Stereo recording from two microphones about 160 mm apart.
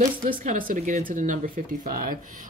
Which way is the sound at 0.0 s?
55° right (ahead or behind).